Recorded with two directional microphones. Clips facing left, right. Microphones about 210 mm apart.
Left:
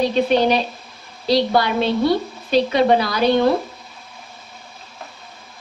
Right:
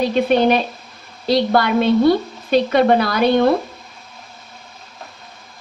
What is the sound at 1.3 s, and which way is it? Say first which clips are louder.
A woman's voice: right 2 dB; 50° right (ahead or behind).